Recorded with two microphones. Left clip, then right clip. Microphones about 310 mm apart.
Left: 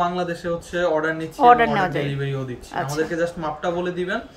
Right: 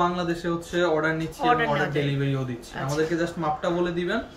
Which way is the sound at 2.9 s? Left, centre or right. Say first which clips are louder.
Left 1 dB; centre.